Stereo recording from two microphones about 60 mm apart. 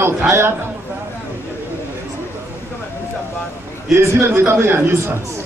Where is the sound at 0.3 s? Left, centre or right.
Right.